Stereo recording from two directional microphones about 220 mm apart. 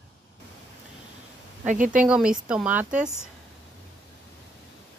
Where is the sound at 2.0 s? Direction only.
5° right (ahead or behind).